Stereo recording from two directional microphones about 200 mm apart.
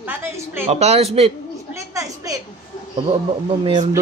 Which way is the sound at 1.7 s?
15° right (ahead or behind).